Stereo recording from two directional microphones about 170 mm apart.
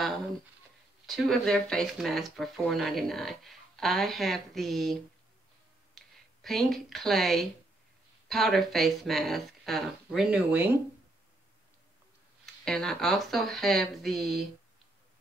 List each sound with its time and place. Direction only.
1.0 s speech: centre (ahead or behind)
12.6 s speech: 5° left (ahead or behind)